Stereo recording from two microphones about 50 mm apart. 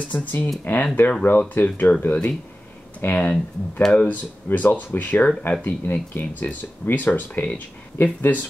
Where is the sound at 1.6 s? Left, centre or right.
Left.